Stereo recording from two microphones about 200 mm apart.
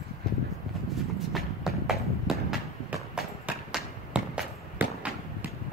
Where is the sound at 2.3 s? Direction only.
5° right (ahead or behind).